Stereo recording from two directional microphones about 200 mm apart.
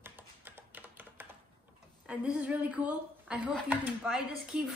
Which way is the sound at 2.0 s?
5° right (ahead or behind).